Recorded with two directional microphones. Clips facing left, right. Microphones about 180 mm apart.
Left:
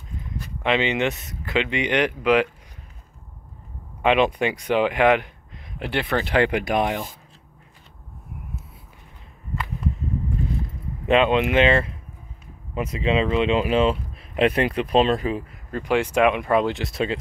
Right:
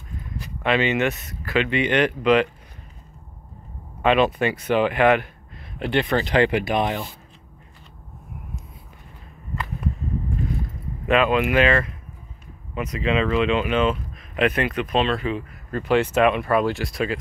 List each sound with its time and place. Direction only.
0.6 s speech: 20° left (ahead or behind)
4.0 s speech: 15° left (ahead or behind)
11.1 s speech: 25° left (ahead or behind)
15.7 s speech: 15° left (ahead or behind)